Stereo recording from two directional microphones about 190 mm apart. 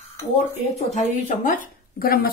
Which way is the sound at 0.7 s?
40° left (ahead or behind).